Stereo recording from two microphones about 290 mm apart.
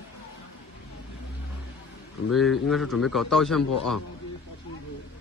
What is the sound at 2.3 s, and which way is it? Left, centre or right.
A man's voice, centre.